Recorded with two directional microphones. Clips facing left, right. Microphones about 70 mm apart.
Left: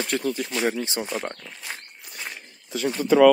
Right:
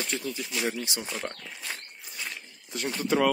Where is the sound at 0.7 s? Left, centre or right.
Left.